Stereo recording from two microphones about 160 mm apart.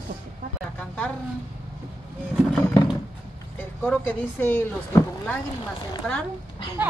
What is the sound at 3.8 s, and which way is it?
Speech, 10° left (ahead or behind).